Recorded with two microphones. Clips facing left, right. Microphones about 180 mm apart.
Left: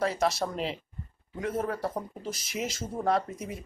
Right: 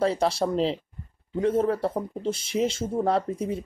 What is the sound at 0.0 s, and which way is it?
Speech, 30° right (ahead or behind).